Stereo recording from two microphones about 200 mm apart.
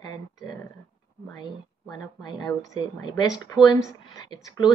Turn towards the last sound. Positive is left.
turn(degrees=20)  # may be behind; listen again after turning